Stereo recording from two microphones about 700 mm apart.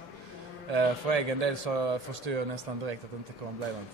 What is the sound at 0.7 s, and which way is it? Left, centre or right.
Speech, right.